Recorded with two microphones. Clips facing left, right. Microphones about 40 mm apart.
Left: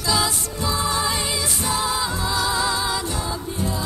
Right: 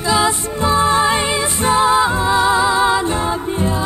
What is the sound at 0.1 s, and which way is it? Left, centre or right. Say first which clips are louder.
Music: right 7 dB; right.